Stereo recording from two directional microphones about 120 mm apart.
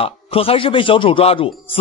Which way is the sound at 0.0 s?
50° left (ahead or behind).